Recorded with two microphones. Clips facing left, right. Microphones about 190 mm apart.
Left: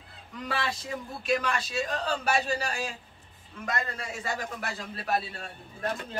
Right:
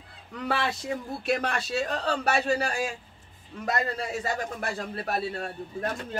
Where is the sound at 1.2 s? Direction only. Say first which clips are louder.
Left 1 dB; 60° right (ahead or behind).